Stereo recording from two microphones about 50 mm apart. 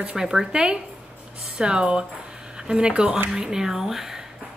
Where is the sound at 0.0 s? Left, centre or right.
Centre.